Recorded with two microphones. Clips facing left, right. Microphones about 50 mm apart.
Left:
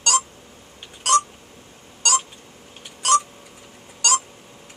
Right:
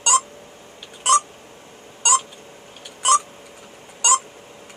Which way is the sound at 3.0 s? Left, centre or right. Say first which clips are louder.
Right 1 dB; centre.